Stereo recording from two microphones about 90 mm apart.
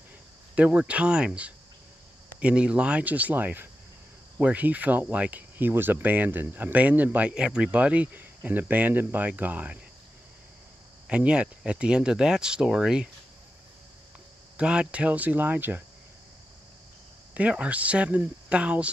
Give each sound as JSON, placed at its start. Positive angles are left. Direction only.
{"t": 0.6, "sound": "speech", "side_deg": -15}
{"t": 11.1, "sound": "speech", "side_deg": -15}
{"t": 14.6, "sound": "speech", "side_deg": -10}
{"t": 17.3, "sound": "speech", "side_deg": -15}